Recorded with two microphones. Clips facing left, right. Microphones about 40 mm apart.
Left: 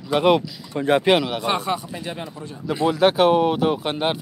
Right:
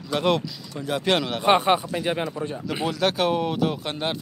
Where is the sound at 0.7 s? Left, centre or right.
Left.